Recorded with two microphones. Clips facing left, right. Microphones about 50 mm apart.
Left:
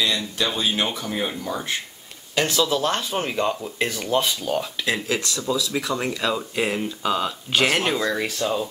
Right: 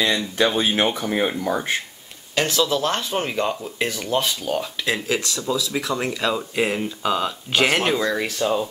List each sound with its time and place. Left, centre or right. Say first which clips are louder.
0.6 s speech: right 4 dB; right
2.3 s speech: right 1 dB; centre